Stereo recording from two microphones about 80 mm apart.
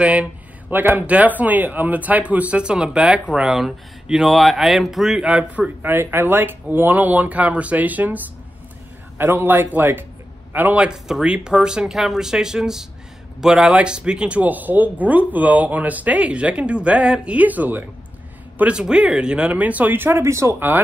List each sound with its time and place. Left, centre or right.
0.0 s speech: centre
5.9 s speech: right
9.2 s speech: right
18.6 s speech: centre; by 20.6 s right